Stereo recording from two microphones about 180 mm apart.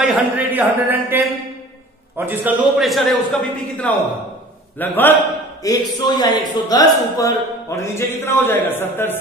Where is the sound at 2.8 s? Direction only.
Centre (ahead or behind).